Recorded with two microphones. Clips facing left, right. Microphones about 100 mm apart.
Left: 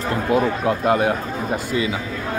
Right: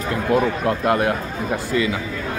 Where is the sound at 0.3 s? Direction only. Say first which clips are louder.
Even; 15° left (ahead or behind).